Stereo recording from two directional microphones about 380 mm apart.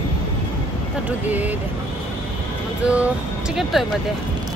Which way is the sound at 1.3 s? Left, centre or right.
Centre.